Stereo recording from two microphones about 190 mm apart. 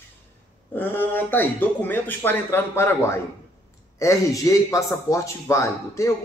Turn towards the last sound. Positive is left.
turn(degrees=15)  # may be behind; listen again after turning